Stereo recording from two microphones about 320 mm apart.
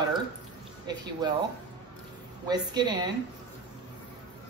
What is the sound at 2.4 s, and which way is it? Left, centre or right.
Speech, centre.